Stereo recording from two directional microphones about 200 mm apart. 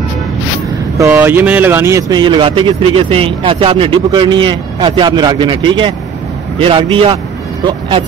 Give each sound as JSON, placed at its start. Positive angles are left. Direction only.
{"t": 0.9, "sound": "speech", "side_deg": -10}